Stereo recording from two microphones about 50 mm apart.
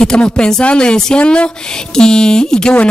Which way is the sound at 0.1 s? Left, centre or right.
Centre.